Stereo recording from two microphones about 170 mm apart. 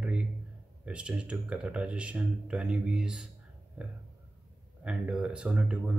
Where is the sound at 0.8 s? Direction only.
5° right (ahead or behind).